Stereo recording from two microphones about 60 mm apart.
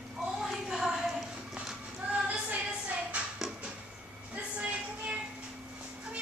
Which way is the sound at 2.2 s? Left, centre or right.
Right.